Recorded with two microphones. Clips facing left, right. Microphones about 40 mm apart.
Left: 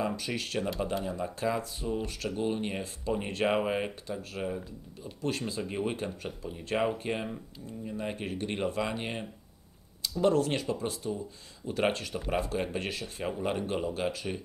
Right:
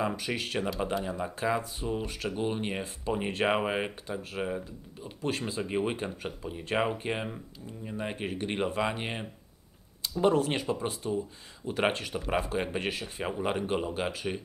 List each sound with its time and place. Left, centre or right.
0.0 s speech: centre